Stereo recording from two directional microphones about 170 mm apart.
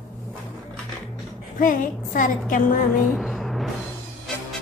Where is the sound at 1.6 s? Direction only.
50° left (ahead or behind).